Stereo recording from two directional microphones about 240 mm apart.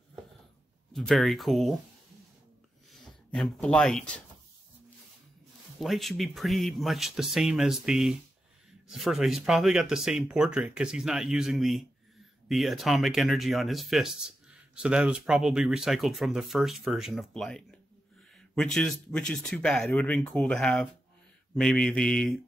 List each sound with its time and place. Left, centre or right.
0.9 s speech: centre
2.9 s speech: centre
5.8 s speech: centre